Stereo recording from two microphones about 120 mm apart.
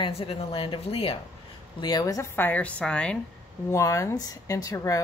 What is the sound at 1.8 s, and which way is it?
Speech, 35° left (ahead or behind).